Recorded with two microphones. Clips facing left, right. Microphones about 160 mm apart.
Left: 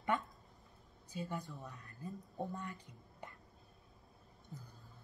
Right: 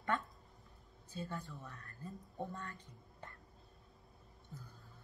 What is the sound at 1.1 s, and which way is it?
Speech, 15° left (ahead or behind).